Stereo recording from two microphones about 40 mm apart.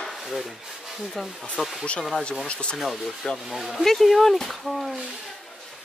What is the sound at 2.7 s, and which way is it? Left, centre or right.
Speech, centre.